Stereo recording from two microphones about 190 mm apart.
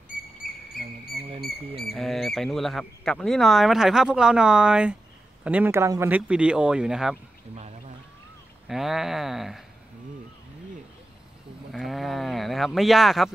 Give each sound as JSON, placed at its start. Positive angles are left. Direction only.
{"t": 0.4, "sound": "cricket", "side_deg": 50}
{"t": 1.8, "sound": "speech", "side_deg": 0}
{"t": 8.6, "sound": "speech", "side_deg": 0}
{"t": 11.7, "sound": "speech", "side_deg": 0}